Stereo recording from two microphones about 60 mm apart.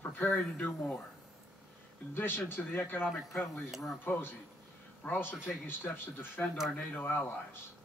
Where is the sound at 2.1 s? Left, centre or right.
Left.